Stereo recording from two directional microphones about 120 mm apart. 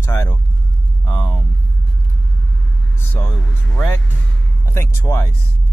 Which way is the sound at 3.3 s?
10° left (ahead or behind).